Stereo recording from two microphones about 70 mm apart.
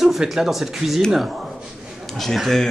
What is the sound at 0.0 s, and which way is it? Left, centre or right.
Speech, centre.